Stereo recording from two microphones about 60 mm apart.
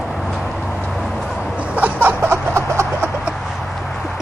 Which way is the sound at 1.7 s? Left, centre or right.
Right.